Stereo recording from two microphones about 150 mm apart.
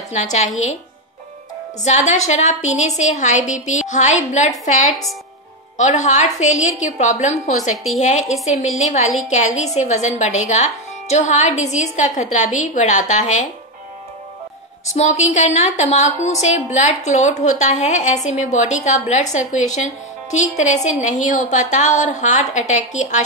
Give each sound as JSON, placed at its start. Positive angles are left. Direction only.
{"t": 0.1, "sound": "a woman's voice", "side_deg": 50}
{"t": 1.9, "sound": "a woman's voice", "side_deg": 50}
{"t": 5.8, "sound": "a woman's voice", "side_deg": 55}
{"t": 15.0, "sound": "a woman's voice", "side_deg": 50}